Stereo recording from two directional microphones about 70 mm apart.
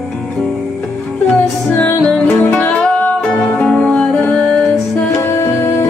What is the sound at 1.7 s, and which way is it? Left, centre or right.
Music, left.